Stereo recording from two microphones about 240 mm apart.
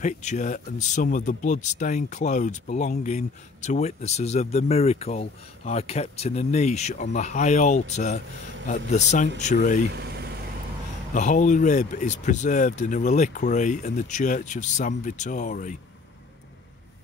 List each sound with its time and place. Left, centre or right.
0.0 s speech: left
9.9 s vehicle: right
11.1 s speech: left